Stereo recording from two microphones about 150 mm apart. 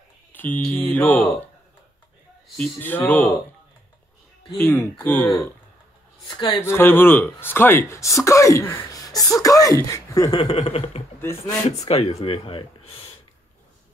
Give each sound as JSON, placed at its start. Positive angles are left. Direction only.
{"t": 0.3, "sound": "speech", "side_deg": 10}
{"t": 2.4, "sound": "speech", "side_deg": 5}
{"t": 4.6, "sound": "speech", "side_deg": 15}
{"t": 6.2, "sound": "speech", "side_deg": 35}
{"t": 6.6, "sound": "speech", "side_deg": 15}
{"t": 10.3, "sound": "speech", "side_deg": 40}